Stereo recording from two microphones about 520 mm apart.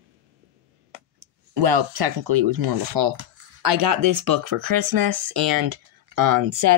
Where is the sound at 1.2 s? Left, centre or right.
Right.